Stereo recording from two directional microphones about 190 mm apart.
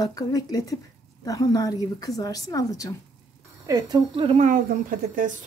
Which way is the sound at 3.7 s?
20° right (ahead or behind).